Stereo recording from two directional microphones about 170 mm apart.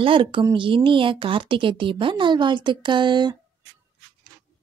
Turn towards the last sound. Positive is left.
turn(degrees=-25)  # may be behind; listen again after turning